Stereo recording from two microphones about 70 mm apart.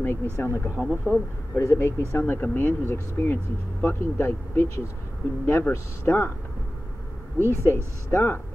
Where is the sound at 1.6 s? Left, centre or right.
Left.